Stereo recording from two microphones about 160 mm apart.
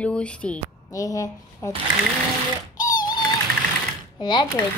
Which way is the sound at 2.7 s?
55° left (ahead or behind).